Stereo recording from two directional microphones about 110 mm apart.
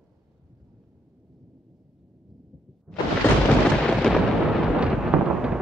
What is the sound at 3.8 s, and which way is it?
Artillery fire, 5° left (ahead or behind).